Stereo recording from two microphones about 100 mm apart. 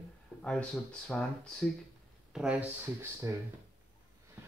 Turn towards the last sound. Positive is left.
turn(degrees=-30)  # may be behind; listen again after turning